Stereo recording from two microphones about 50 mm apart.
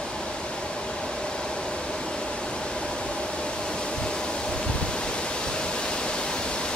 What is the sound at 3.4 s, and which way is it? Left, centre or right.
Pink noise, centre.